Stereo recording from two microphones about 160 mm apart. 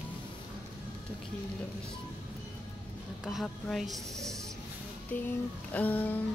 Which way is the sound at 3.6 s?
Centre (ahead or behind).